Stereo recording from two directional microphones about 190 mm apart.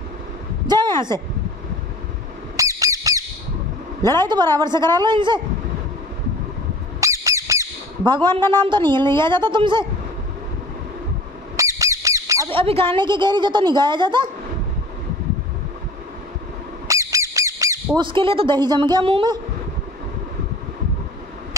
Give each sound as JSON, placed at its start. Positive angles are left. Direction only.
{"t": 0.7, "sound": "a sound", "side_deg": -25}
{"t": 2.5, "sound": "squawk", "side_deg": -15}
{"t": 4.0, "sound": "a woman's voice", "side_deg": 15}
{"t": 4.6, "sound": "a woman's voice", "side_deg": -20}
{"t": 7.0, "sound": "squawk", "side_deg": -15}
{"t": 8.4, "sound": "a woman's voice", "side_deg": 10}
{"t": 8.6, "sound": "a woman's voice", "side_deg": -25}
{"t": 11.5, "sound": "squawk", "side_deg": -15}
{"t": 12.4, "sound": "a woman's voice", "side_deg": -30}
{"t": 16.8, "sound": "squawk", "side_deg": -15}
{"t": 17.9, "sound": "a woman's voice", "side_deg": -25}